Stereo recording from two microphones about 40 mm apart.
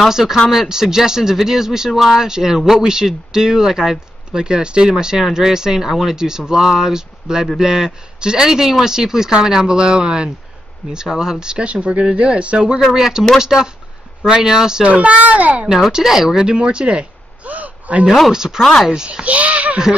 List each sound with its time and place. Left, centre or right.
0.1 s speech: centre
14.9 s a child's voice: right
15.9 s speech: centre
17.5 s a sound: right
18.3 s speech: centre
19.2 s a child's voice: right